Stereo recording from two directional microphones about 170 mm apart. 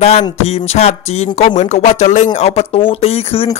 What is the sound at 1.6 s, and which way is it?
Speech, 45° left (ahead or behind).